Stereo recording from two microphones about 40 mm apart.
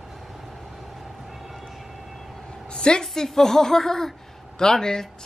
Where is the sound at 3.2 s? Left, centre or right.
Centre.